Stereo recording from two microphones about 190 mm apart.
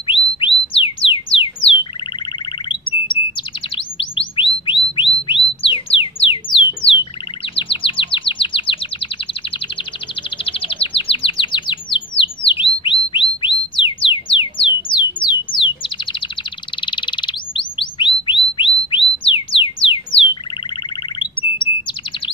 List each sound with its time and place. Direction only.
0.1 s bird: 30° left (ahead or behind)
7.5 s chirp: 25° left (ahead or behind)
10.4 s chirp: 30° left (ahead or behind)
12.4 s bird: 25° left (ahead or behind)
13.1 s a sound: 25° left (ahead or behind)
15.5 s bird: 25° left (ahead or behind)
19.5 s music: 30° left (ahead or behind)
20.1 s bird: 30° left (ahead or behind)